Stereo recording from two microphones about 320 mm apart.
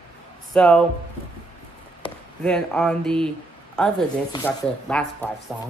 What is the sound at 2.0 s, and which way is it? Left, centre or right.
Chop, centre.